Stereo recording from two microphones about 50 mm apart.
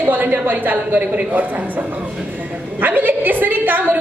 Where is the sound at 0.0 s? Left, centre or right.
Right.